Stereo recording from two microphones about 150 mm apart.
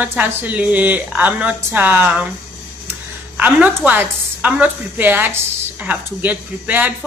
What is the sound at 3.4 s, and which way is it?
A woman's voice, 10° right (ahead or behind).